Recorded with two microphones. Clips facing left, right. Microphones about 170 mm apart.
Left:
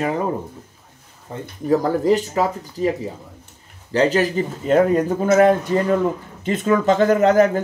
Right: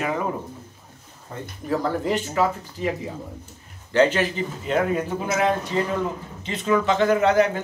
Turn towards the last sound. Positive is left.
turn(degrees=40)  # may be behind; listen again after turning